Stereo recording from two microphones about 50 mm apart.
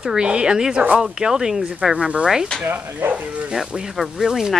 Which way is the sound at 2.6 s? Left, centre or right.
Right.